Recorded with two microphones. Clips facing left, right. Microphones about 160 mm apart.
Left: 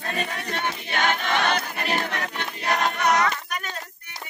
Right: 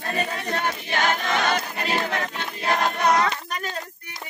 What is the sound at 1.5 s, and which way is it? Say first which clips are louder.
Choir: right 1 dB; 30° right (ahead or behind).